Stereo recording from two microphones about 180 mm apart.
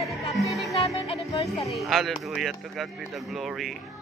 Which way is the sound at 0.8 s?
35° left (ahead or behind).